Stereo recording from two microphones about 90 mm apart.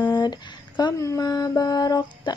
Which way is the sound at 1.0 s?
40° left (ahead or behind).